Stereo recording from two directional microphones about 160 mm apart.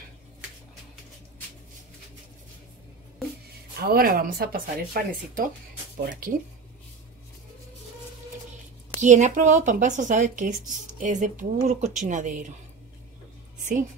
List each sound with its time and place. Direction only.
3.8 s speech: 70° right (ahead or behind)
9.0 s speech: 50° right (ahead or behind)